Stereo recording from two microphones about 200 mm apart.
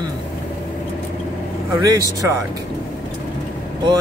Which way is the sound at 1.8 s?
15° right (ahead or behind).